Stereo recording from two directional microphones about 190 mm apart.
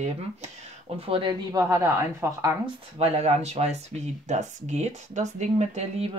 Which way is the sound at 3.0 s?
35° right (ahead or behind).